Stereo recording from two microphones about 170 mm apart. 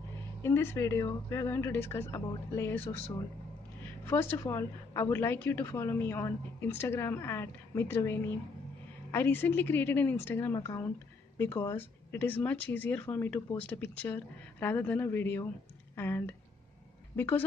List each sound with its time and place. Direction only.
0.4 s a woman's voice: 15° left (ahead or behind)
4.0 s a woman's voice: 15° left (ahead or behind)